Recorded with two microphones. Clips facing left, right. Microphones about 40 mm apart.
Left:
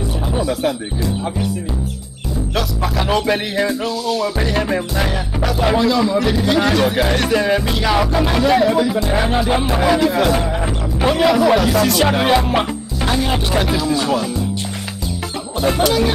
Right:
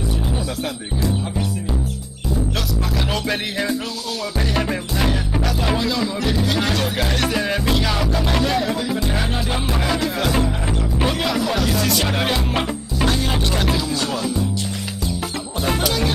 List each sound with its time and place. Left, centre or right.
3.1 s speech: centre
4.2 s music: centre
5.7 s speech: centre
15.8 s music: centre